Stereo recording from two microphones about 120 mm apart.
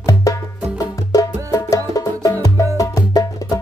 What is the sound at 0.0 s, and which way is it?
Music, 30° left (ahead or behind).